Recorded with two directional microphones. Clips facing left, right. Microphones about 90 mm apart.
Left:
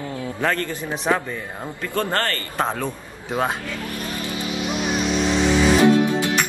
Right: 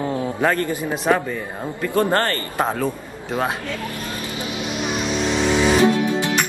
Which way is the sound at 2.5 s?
5° right (ahead or behind).